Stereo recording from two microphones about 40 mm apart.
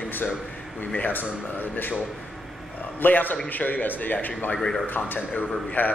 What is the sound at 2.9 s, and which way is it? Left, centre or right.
A man's voice, left.